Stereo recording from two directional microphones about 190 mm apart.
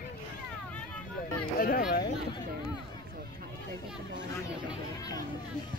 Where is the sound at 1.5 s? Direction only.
50° left (ahead or behind).